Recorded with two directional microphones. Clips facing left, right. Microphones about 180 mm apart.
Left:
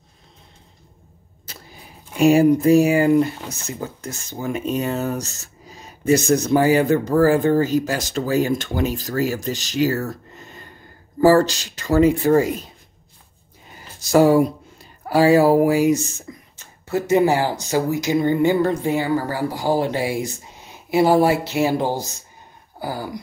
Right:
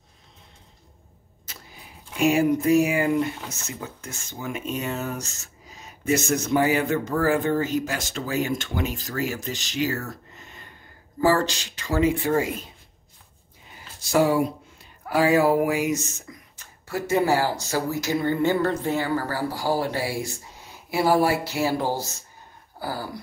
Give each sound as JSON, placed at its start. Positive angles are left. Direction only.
{"t": 2.1, "sound": "speech", "side_deg": 35}
{"t": 13.7, "sound": "speech", "side_deg": 40}
{"t": 22.8, "sound": "a sound", "side_deg": 15}